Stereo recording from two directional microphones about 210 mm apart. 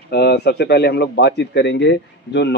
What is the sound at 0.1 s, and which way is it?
A man's voice, 50° left (ahead or behind).